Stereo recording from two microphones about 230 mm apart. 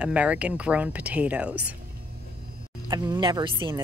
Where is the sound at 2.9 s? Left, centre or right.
Centre.